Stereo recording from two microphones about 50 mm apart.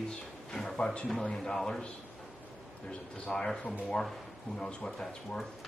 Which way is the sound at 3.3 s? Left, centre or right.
Centre.